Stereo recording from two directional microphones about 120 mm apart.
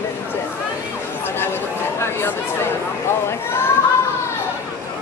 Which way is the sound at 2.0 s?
20° left (ahead or behind).